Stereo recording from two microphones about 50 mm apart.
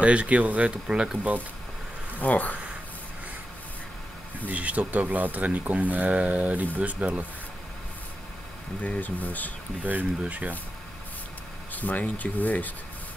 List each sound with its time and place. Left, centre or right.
0.0 s speech: right
0.8 s speech: centre
2.1 s speech: left
4.5 s speech: right
8.8 s speech: left
9.8 s speech: right
11.7 s speech: left